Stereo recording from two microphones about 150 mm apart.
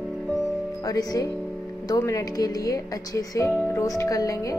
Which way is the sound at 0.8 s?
25° left (ahead or behind).